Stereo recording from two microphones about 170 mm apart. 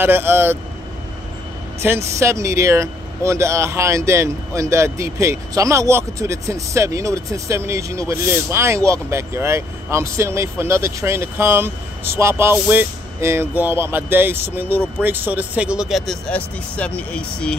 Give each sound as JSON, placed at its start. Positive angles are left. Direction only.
{"t": 0.0, "sound": "speech", "side_deg": -15}
{"t": 1.8, "sound": "speech", "side_deg": -15}